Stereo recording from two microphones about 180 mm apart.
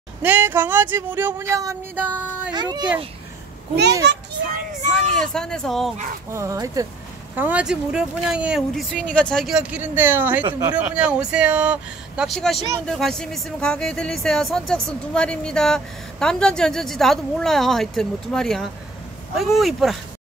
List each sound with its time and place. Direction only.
0.2 s speech: 10° right (ahead or behind)
2.5 s speech: 25° right (ahead or behind)
4.0 s a child's voice: 75° right (ahead or behind)
5.2 s speech: 5° left (ahead or behind)
6.3 s speech: 15° right (ahead or behind); by 20.0 s centre (ahead or behind)